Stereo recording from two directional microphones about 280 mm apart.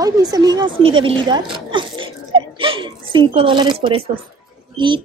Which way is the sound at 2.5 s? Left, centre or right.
Centre.